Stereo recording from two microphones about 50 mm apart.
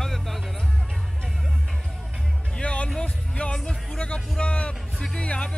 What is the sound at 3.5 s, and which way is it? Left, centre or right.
Music, centre.